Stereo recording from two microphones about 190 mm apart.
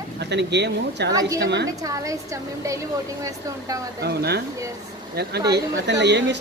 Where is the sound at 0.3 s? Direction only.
65° right (ahead or behind).